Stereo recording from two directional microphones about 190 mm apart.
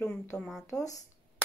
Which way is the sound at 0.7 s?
15° left (ahead or behind).